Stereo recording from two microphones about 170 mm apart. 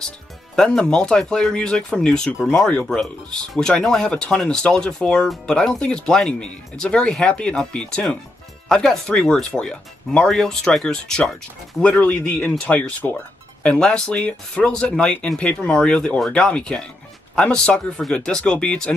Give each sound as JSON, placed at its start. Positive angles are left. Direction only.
{"t": 0.6, "sound": "speech", "side_deg": 5}